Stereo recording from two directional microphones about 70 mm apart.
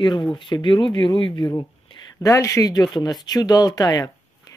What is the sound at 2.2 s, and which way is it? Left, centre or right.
Speech, left.